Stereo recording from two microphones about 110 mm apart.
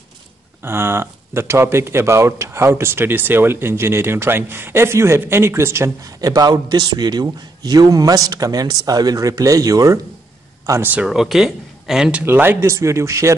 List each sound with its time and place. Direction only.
0.7 s speech: 20° right (ahead or behind)
10.7 s speech: 15° right (ahead or behind)
11.1 s speech: 5° right (ahead or behind); by 13.3 s 25° right (ahead or behind)